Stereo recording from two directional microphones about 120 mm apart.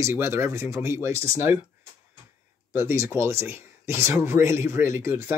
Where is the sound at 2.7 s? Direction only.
20° right (ahead or behind).